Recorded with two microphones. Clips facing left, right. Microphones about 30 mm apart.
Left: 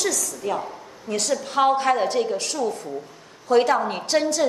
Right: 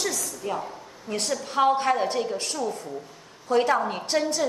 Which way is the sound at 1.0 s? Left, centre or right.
Left.